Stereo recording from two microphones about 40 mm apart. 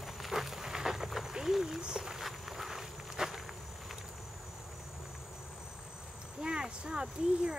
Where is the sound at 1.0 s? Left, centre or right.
Centre.